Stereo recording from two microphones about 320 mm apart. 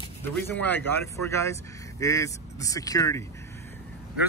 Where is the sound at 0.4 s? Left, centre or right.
Centre.